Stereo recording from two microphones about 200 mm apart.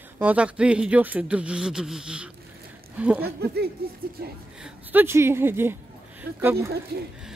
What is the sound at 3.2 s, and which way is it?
Speech, 50° right (ahead or behind).